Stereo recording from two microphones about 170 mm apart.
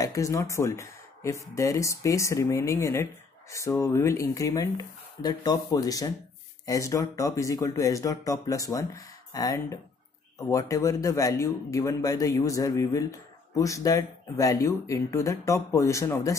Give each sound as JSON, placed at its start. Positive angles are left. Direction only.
{"t": 0.0, "sound": "a man's voice", "side_deg": 20}